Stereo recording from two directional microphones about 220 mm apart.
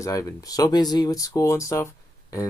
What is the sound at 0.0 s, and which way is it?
Speech, 15° left (ahead or behind).